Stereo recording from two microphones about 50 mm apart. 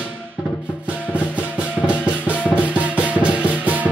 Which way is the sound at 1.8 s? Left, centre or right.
Right.